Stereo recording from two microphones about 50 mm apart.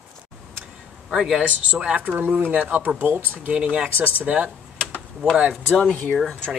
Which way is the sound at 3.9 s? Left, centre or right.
Right.